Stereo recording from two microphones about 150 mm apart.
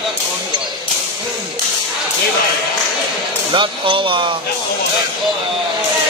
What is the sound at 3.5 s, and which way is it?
Speech, 35° right (ahead or behind).